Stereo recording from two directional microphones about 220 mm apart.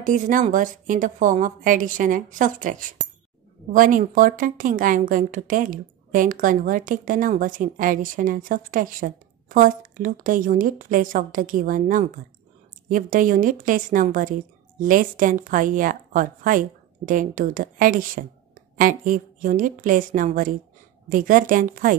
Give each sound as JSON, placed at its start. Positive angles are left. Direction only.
{"t": 0.0, "sound": "a woman's voice", "side_deg": -35}